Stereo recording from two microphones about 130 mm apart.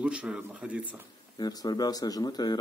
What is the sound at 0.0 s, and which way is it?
Speech, 10° right (ahead or behind).